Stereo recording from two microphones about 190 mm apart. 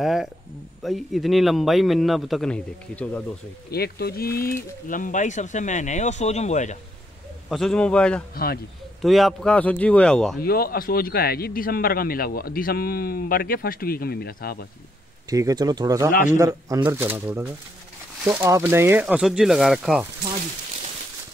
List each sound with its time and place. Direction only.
0.0 s a man's voice: centre (ahead or behind)
3.7 s speech: 55° left (ahead or behind); by 6.8 s 40° left (ahead or behind)
7.4 s a man's voice: 5° left (ahead or behind)
10.4 s a man's voice: 55° left (ahead or behind)
15.2 s speech: 20° right (ahead or behind)
16.1 s a man's voice: 45° left (ahead or behind)
16.3 s a man's voice: 20° right (ahead or behind)